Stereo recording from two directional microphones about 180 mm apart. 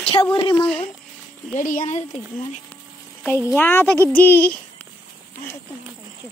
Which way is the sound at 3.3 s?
10° left (ahead or behind).